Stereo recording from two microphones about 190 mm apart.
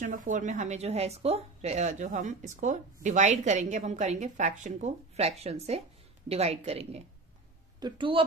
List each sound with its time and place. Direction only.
0.0 s a woman's voice: 45° right (ahead or behind); by 8.2 s 25° right (ahead or behind)